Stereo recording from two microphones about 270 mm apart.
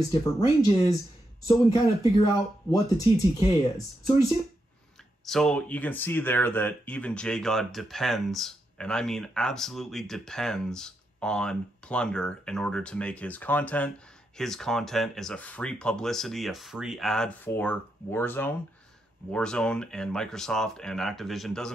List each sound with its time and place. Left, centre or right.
0.1 s speech: centre
5.2 s speech: centre